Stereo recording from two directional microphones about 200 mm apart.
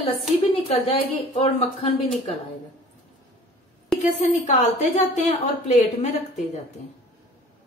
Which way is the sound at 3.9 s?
Centre (ahead or behind).